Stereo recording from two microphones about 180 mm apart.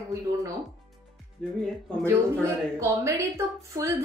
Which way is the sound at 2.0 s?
15° right (ahead or behind).